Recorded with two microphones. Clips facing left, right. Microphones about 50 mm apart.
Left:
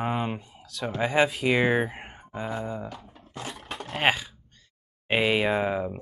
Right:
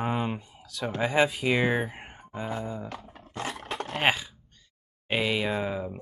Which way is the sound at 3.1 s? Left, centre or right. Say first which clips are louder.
Right 3 dB; right.